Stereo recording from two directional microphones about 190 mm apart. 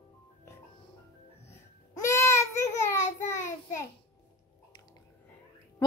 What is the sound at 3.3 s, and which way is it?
Child singing, 15° left (ahead or behind).